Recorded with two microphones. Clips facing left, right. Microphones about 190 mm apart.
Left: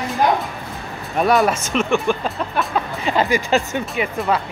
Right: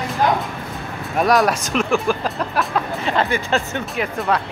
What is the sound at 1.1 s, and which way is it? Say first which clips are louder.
Speech: even; centre (ahead or behind).